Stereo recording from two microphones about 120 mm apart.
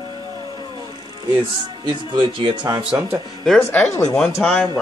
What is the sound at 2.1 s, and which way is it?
Speech, 40° right (ahead or behind).